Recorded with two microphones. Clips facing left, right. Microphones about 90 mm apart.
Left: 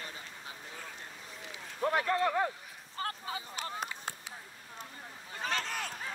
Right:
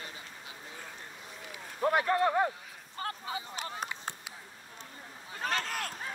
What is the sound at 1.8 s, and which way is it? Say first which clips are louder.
Speech: right 3 dB; 25° right (ahead or behind).